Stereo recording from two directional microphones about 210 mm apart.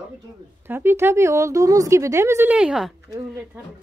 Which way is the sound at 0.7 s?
10° right (ahead or behind).